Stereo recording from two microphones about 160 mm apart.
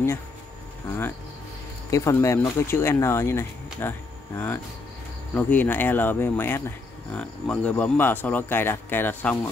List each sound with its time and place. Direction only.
0.8 s speech: 15° left (ahead or behind)
5.3 s speech: 10° left (ahead or behind)